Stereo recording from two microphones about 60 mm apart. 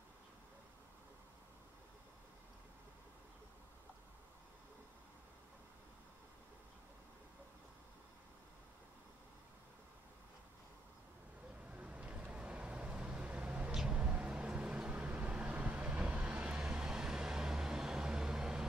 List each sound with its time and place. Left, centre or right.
11.7 s vehicle: right